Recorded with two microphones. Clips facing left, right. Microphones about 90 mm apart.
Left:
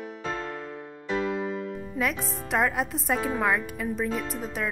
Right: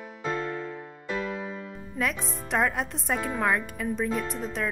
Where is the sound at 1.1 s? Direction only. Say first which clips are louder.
Left 4 dB; 25° left (ahead or behind).